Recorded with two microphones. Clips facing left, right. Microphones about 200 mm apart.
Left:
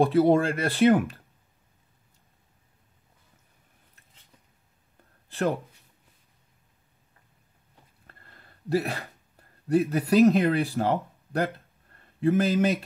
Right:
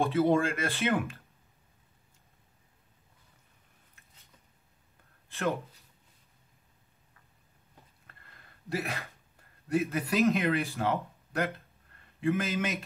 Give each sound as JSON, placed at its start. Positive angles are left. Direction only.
{"t": 0.0, "sound": "speech", "side_deg": 40}
{"t": 8.1, "sound": "a sound", "side_deg": 35}
{"t": 9.7, "sound": "speech", "side_deg": 35}